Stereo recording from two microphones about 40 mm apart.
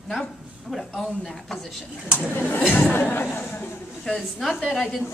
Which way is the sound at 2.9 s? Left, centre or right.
Left.